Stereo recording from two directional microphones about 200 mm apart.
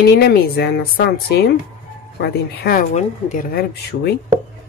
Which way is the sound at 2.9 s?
40° left (ahead or behind).